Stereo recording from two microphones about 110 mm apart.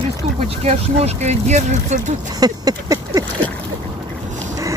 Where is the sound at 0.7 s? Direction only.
75° right (ahead or behind); by 2.1 s 90° right.